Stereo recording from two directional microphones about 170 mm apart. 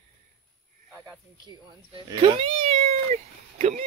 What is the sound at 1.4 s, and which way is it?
Speech, 25° right (ahead or behind).